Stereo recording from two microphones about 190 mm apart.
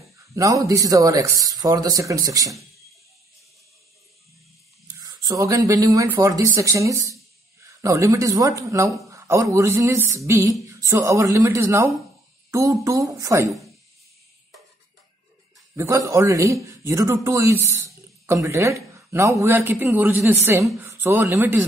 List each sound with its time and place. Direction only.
0.4 s a man's voice: 20° right (ahead or behind)
4.9 s a man's voice: 20° right (ahead or behind)
15.7 s a man's voice: 15° right (ahead or behind)